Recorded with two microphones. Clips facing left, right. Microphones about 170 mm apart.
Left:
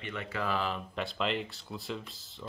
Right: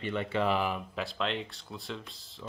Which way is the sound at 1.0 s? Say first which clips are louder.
Left 3 dB; centre (ahead or behind).